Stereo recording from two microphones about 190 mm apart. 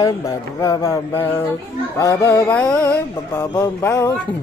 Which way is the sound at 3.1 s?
15° left (ahead or behind).